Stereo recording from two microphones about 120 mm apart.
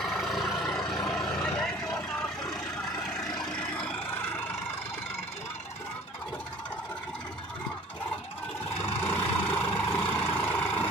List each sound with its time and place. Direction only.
0.0 s vehicle: centre (ahead or behind)
9.0 s vehicle: 15° left (ahead or behind)